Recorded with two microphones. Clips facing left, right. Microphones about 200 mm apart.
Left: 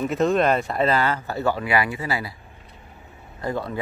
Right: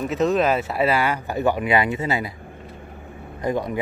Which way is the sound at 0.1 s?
Centre (ahead or behind).